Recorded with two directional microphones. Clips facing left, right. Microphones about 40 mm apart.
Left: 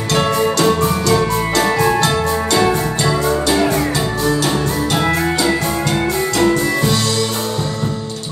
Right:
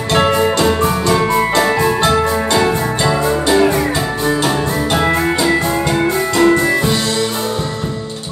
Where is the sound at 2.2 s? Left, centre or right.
Right.